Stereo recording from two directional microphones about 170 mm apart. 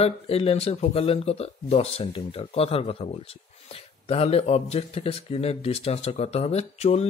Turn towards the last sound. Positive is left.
turn(degrees=40)  # may be behind; listen again after turning